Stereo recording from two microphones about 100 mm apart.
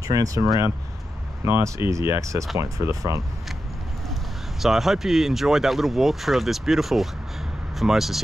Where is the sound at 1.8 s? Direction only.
60° left (ahead or behind).